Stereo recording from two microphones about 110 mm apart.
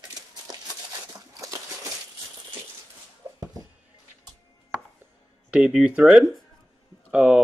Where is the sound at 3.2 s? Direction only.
25° right (ahead or behind).